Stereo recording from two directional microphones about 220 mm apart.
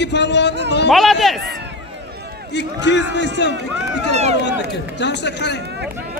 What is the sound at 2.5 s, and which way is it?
A man's voice, 55° left (ahead or behind).